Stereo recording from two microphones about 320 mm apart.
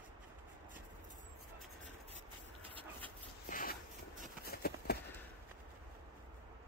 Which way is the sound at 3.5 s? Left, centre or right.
Left.